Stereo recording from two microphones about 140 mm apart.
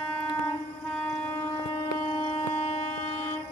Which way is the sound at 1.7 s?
30° left (ahead or behind).